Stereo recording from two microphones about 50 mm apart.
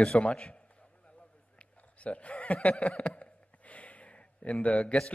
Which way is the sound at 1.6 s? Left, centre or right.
Left.